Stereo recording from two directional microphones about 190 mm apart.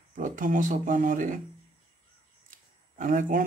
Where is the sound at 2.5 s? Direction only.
45° right (ahead or behind).